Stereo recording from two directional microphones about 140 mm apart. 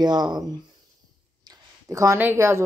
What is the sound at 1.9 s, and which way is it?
Speech, 20° right (ahead or behind).